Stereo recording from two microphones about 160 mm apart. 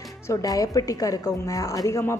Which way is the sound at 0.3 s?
20° left (ahead or behind).